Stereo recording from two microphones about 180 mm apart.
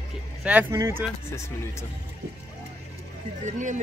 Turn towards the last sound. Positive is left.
turn(degrees=-45)  # may be behind; listen again after turning